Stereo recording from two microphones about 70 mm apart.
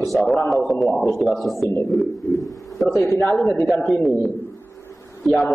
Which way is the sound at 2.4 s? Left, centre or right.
Left.